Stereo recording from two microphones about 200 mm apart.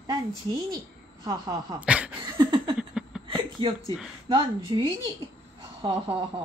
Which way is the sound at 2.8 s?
5° right (ahead or behind).